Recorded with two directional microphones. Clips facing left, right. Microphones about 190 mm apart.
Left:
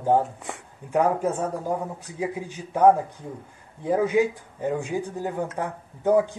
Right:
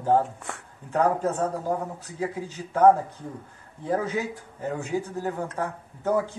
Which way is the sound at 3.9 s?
15° left (ahead or behind).